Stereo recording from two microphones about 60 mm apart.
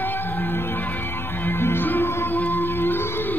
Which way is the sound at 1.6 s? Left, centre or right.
Left.